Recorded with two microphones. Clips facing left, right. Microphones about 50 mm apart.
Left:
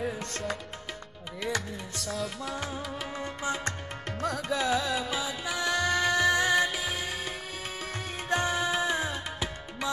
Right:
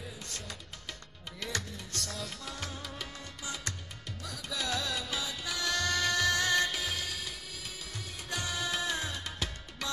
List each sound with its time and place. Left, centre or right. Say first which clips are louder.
0.0 s music: left 11 dB; left
1.4 s music: left 6 dB; centre
2.5 s music: left 7 dB; centre
3.2 s music: left 10 dB; left
4.6 s music: left 4 dB; centre
7.8 s music: left 8 dB; left